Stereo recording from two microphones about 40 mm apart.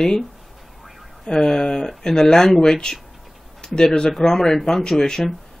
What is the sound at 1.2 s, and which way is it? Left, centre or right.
Speech, centre.